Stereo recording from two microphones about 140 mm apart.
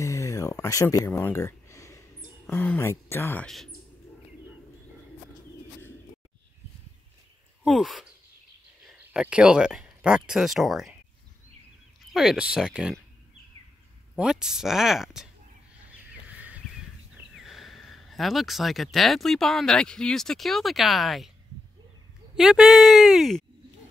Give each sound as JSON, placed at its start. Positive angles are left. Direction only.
{"t": 0.0, "sound": "a sound", "side_deg": 20}
{"t": 2.9, "sound": "speech", "side_deg": 15}
{"t": 3.4, "sound": "speech", "side_deg": 5}
{"t": 7.6, "sound": "speech", "side_deg": 0}
{"t": 12.1, "sound": "speech", "side_deg": -5}
{"t": 14.1, "sound": "speech", "side_deg": -5}
{"t": 16.0, "sound": "a sound", "side_deg": -10}
{"t": 17.4, "sound": "speech", "side_deg": 0}
{"t": 22.4, "sound": "speech", "side_deg": -5}